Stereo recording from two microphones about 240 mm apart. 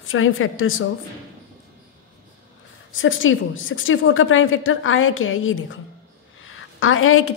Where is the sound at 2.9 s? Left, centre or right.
Left.